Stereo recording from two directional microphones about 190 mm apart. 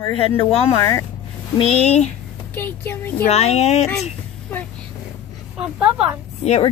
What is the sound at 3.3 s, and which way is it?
Speech, 35° left (ahead or behind).